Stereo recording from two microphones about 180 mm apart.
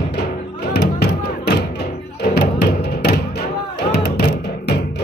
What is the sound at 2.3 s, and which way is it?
Music, 65° left (ahead or behind).